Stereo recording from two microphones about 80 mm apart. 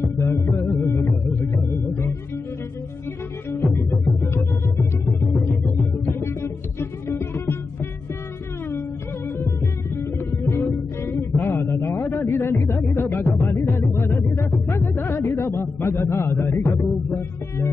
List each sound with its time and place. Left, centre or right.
0.2 s music: left
3.4 s music: left
6.0 s music: left
14.7 s a sound: left